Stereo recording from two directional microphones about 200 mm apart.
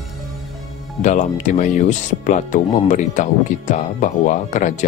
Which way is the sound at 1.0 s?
35° left (ahead or behind).